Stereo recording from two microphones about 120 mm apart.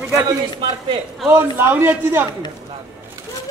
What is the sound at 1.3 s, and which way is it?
Speech, 20° right (ahead or behind).